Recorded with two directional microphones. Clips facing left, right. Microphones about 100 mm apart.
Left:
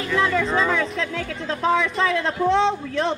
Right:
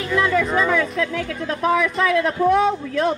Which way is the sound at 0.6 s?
25° left (ahead or behind).